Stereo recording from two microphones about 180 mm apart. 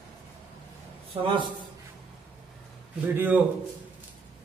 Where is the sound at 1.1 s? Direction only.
30° right (ahead or behind).